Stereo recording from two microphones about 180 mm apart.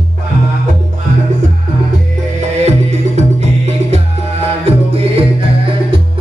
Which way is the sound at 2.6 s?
40° right (ahead or behind).